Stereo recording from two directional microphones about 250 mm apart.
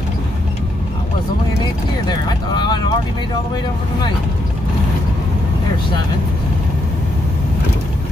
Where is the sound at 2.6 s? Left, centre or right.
Centre.